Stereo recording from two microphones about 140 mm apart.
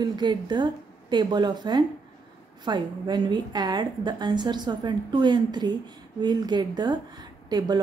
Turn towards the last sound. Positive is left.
turn(degrees=-30)  # may be behind; listen again after turning